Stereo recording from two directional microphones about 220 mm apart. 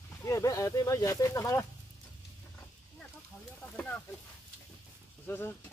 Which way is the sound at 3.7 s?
5° left (ahead or behind).